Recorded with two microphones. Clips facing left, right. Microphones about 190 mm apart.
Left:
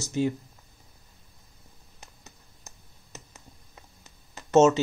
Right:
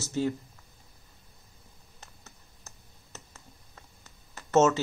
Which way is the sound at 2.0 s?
15° left (ahead or behind).